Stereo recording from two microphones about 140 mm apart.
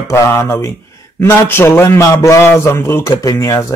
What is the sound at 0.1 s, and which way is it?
Speech, 20° left (ahead or behind).